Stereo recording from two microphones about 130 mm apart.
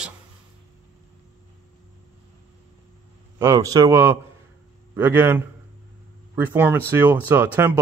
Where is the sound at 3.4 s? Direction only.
25° right (ahead or behind).